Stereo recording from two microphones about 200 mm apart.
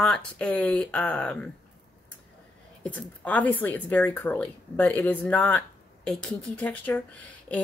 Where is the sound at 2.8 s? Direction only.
5° left (ahead or behind).